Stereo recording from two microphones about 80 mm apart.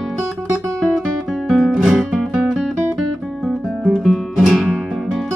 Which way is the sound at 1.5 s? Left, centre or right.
Centre.